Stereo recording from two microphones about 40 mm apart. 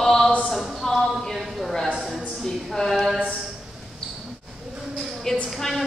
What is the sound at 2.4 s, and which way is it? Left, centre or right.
Speech, centre.